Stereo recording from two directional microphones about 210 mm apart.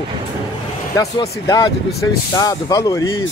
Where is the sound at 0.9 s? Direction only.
15° left (ahead or behind).